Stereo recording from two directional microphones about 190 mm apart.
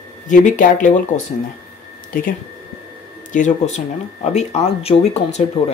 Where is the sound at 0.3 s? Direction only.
40° left (ahead or behind).